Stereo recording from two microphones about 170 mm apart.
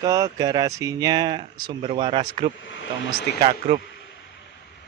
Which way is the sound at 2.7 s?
90° left.